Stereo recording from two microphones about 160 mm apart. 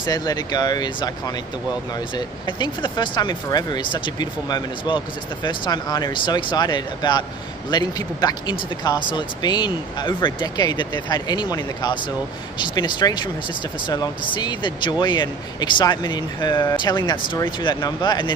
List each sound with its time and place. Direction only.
0.0 s speech: 25° left (ahead or behind)